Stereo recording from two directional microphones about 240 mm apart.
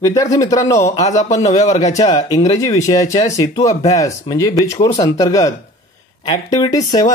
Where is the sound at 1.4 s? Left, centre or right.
Left.